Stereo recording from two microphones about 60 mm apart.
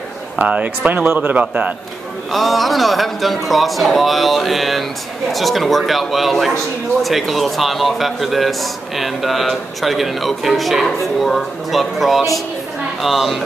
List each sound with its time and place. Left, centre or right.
0.4 s speech: right
2.3 s a man's voice: centre